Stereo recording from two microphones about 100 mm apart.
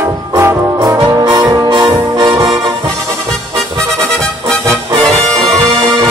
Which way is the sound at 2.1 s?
45° right (ahead or behind).